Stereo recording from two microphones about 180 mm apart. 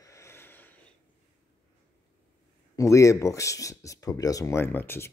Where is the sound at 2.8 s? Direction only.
15° left (ahead or behind).